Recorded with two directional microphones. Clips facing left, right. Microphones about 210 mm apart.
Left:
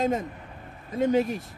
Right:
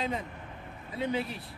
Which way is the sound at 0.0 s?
45° left (ahead or behind).